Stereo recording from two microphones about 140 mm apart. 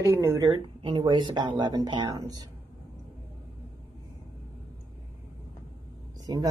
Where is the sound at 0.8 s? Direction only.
35° right (ahead or behind).